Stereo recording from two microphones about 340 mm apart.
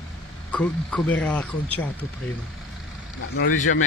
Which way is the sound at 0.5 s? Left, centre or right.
Centre.